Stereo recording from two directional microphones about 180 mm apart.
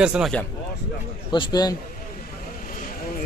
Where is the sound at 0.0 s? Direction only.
5° right (ahead or behind).